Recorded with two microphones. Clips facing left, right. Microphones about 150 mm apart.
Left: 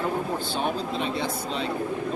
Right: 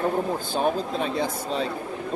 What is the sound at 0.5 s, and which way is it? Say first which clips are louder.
Speech: right 5 dB; 40° right (ahead or behind).